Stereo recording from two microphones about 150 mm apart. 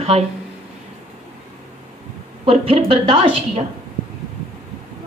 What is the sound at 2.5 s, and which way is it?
Speech, 40° right (ahead or behind).